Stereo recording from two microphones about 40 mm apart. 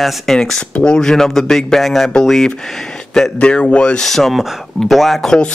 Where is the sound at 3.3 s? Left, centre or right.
Left.